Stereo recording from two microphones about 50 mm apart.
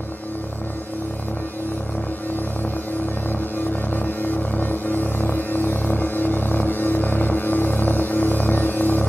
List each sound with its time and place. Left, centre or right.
3.9 s music: left